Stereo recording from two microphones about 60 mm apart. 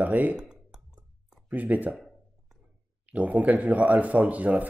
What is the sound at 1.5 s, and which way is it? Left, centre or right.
Speech, right.